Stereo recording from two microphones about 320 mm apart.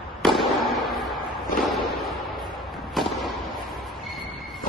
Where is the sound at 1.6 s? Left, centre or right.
Centre.